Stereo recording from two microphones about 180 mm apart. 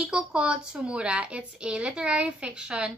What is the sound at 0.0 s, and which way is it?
Speech, 5° right (ahead or behind).